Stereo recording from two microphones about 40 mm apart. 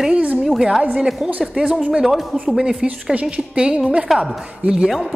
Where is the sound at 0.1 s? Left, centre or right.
Right.